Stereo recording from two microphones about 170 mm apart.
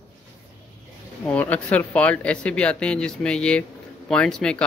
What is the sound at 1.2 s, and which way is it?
Speech, 10° left (ahead or behind).